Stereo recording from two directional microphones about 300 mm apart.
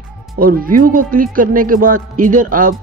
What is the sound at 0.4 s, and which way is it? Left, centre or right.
Speech, right.